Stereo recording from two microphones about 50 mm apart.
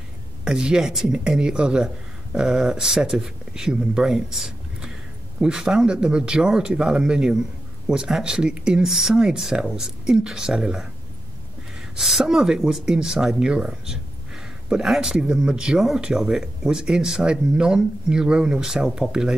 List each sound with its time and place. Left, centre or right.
0.5 s speech: centre
12.0 s speech: centre